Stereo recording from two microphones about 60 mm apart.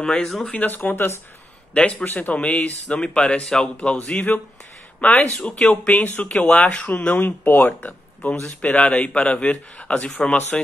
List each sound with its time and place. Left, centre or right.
0.0 s speech: centre
0.5 s speech: left
1.7 s a man's voice: left
6.9 s a man's voice: left